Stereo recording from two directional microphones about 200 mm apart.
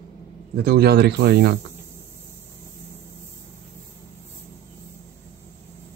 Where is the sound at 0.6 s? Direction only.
50° right (ahead or behind).